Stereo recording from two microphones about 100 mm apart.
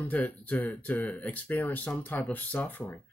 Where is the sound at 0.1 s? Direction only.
15° left (ahead or behind).